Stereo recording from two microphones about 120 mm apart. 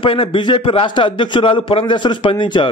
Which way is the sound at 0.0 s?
50° left (ahead or behind).